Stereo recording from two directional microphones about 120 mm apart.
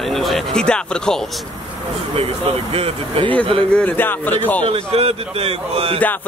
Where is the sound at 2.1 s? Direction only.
55° right (ahead or behind).